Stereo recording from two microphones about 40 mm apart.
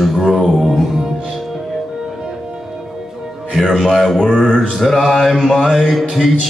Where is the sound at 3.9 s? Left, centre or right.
Centre.